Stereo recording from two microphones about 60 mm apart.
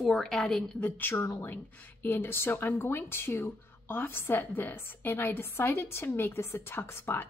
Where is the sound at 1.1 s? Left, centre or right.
Left.